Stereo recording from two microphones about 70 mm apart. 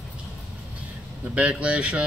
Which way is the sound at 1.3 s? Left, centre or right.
Centre.